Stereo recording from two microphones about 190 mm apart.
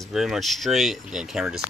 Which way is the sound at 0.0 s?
Centre (ahead or behind).